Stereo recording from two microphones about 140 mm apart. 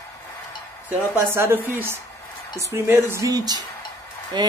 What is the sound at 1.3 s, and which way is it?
A woman's voice, 15° right (ahead or behind).